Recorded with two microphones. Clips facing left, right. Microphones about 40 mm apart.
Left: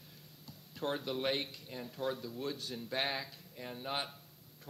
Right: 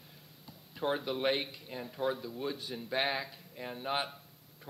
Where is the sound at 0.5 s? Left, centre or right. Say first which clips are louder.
Right 4 dB; centre.